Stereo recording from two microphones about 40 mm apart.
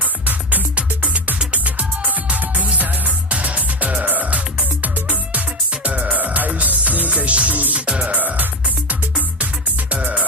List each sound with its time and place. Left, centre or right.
0.0 s music: right